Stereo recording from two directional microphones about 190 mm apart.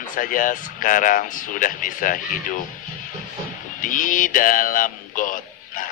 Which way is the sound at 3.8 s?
45° left (ahead or behind).